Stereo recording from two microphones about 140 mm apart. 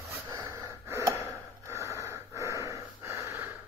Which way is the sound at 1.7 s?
20° right (ahead or behind).